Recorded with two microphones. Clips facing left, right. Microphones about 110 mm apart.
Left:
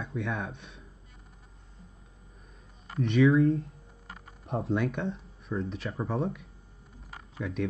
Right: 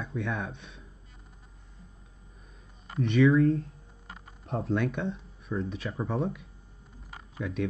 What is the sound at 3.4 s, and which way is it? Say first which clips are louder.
Speech: even; 30° left (ahead or behind).